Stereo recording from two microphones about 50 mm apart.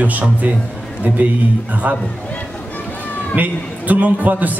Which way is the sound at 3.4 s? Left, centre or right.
Right.